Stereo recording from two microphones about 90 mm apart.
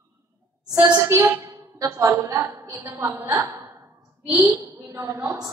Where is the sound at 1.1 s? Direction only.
35° right (ahead or behind).